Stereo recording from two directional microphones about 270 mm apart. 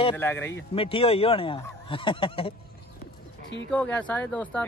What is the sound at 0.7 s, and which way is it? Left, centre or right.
Speech, left.